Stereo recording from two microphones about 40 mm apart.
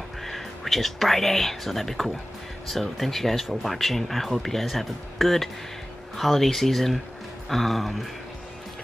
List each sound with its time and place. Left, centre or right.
0.2 s speech: centre